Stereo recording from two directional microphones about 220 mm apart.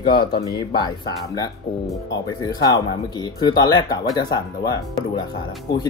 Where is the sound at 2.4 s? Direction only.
20° left (ahead or behind).